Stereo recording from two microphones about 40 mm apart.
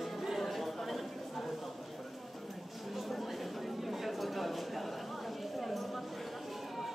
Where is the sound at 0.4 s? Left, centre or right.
Centre.